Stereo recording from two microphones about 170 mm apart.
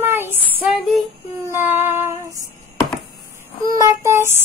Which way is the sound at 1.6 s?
10° right (ahead or behind).